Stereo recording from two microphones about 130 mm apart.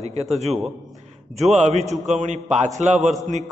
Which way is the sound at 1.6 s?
60° right (ahead or behind).